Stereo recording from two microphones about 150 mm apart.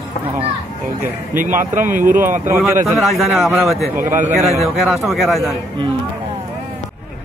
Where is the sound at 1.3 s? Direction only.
60° right (ahead or behind).